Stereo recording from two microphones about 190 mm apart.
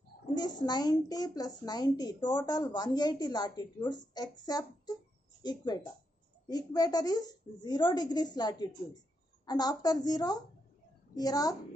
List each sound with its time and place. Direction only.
0.3 s a woman's voice: 20° left (ahead or behind)